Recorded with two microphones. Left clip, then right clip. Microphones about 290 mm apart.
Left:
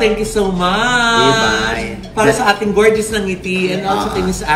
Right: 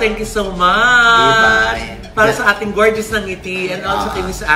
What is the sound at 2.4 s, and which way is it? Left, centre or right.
Speech, centre.